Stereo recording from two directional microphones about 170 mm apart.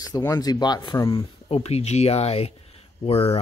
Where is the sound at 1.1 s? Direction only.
35° left (ahead or behind).